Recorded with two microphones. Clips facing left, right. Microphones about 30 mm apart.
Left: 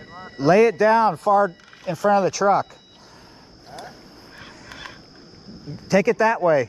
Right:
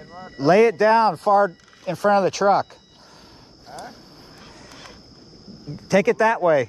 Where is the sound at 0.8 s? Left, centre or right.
Right.